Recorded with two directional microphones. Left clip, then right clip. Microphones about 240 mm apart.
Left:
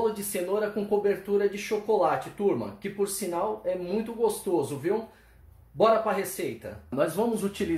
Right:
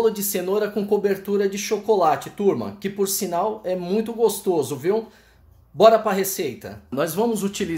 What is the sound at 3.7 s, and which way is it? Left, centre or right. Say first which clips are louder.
Speech: right 6 dB; right.